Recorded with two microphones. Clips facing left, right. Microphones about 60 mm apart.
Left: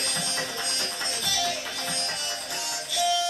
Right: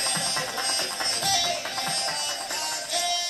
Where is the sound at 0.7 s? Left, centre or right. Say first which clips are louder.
Right 2 dB; right.